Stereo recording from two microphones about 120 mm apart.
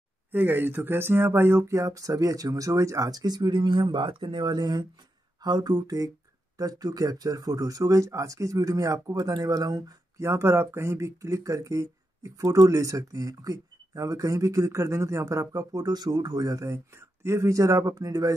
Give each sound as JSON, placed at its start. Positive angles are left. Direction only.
{"t": 0.3, "sound": "speech", "side_deg": -15}